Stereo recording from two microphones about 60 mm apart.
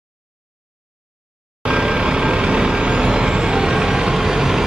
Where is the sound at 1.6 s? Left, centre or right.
Centre.